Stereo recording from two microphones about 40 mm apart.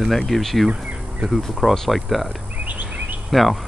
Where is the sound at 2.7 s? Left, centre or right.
Right.